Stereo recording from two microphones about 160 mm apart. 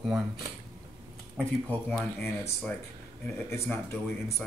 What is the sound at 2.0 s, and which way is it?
Speech, 10° left (ahead or behind).